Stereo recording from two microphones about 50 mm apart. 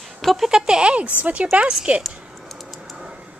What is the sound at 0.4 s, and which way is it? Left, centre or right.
Speech, centre.